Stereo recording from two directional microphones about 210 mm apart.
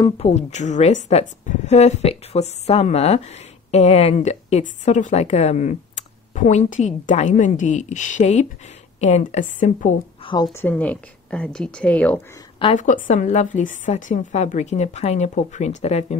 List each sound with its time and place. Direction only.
0.0 s speech: 30° left (ahead or behind)
10.2 s a woman's voice: 20° left (ahead or behind)
12.7 s speech: 35° left (ahead or behind)